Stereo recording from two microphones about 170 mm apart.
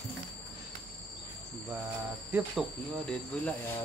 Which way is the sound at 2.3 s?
5° right (ahead or behind).